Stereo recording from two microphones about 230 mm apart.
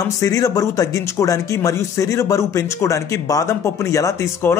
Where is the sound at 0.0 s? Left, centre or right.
Centre.